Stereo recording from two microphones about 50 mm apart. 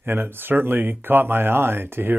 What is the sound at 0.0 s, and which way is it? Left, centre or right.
Speech, right.